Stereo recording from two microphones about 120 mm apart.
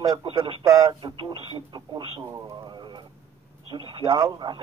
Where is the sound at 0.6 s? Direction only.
25° right (ahead or behind).